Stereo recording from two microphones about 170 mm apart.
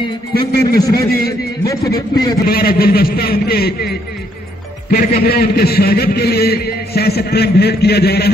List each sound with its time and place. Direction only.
0.3 s a man's voice: 65° left (ahead or behind)
1.7 s a man's voice: 20° left (ahead or behind)
2.4 s a man's voice: 60° left (ahead or behind)
4.9 s a man's voice: 65° left (ahead or behind)